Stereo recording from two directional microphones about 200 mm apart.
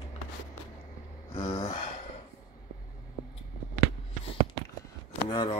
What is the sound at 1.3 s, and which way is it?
Gasp, 15° left (ahead or behind).